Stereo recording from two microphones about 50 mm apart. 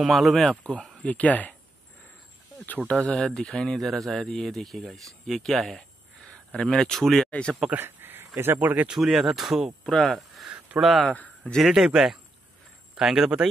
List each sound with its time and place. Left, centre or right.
0.0 s speech: centre
1.0 s speech: left
2.9 s speech: centre
5.8 s a sound: centre
6.6 s speech: centre
7.2 s speech: left
7.7 s a sound: right
8.5 s speech: right
8.9 s speech: centre
9.8 s speech: centre
10.8 s speech: centre